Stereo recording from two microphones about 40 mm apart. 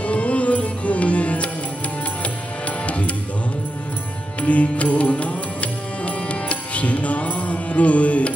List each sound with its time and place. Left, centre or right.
0.0 s music: left
4.4 s music: left